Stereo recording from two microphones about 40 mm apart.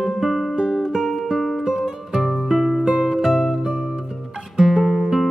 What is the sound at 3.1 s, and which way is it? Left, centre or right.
Music, centre.